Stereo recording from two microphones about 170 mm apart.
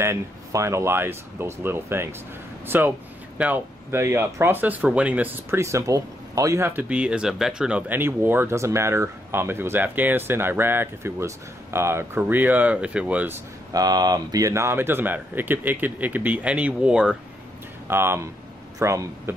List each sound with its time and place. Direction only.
0.0 s speech: 15° right (ahead or behind)
13.7 s speech: 20° right (ahead or behind)